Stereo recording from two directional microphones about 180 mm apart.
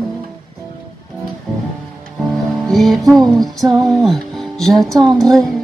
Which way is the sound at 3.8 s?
Centre (ahead or behind).